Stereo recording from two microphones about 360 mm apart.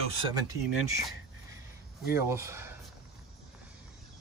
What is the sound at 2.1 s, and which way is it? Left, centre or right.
Speech, centre.